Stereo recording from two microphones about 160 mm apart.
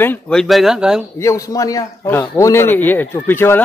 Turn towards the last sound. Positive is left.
turn(degrees=15)  # may be behind; listen again after turning